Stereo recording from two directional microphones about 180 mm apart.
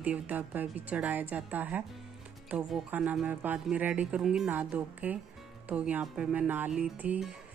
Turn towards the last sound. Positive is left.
turn(degrees=-5)  # may be behind; listen again after turning